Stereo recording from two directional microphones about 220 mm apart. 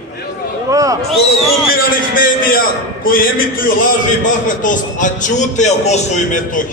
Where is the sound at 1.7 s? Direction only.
40° left (ahead or behind).